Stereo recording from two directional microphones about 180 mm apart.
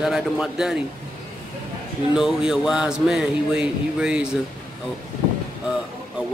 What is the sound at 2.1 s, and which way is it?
Speech, 5° right (ahead or behind).